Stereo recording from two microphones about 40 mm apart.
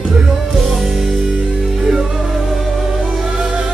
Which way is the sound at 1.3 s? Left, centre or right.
Centre.